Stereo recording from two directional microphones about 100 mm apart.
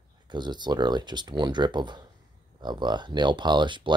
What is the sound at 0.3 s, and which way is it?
Speech, 50° right (ahead or behind).